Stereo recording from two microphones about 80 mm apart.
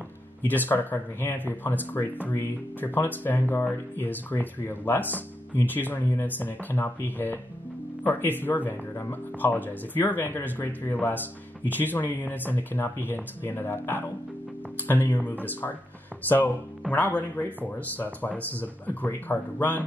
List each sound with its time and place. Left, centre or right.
0.5 s speech: left